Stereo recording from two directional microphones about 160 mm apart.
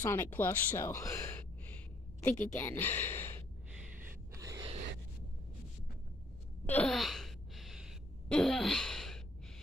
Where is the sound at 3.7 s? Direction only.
10° right (ahead or behind).